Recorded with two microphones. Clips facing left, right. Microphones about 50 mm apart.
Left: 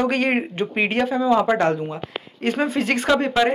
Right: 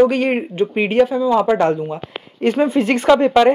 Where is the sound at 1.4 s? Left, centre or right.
Left.